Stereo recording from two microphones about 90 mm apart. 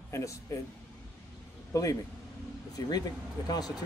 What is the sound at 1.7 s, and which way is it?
A man's voice, 40° left (ahead or behind).